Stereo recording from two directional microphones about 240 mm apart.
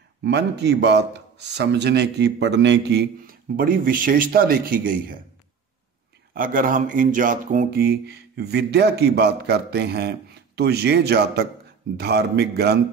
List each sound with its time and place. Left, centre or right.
0.2 s a man's voice: right
6.3 s a man's voice: right